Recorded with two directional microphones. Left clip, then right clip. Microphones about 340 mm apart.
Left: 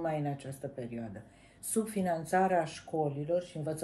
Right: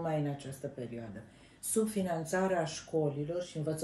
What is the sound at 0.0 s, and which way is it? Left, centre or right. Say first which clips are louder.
Speech: left 1 dB; centre.